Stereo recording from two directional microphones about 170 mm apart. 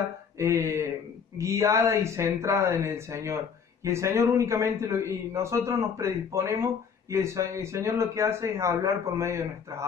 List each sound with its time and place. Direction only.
0.4 s speech: 15° right (ahead or behind)